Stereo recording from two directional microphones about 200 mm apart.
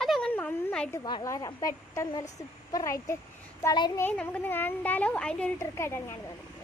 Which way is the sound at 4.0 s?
5° left (ahead or behind).